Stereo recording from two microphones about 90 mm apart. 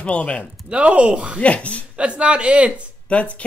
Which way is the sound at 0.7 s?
15° right (ahead or behind).